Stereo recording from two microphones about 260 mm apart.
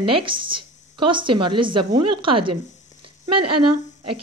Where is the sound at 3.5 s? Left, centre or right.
Right.